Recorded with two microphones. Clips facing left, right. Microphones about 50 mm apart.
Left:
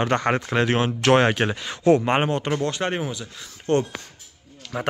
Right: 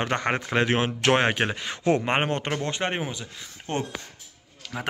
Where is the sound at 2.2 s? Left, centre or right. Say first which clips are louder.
Left 3 dB; right.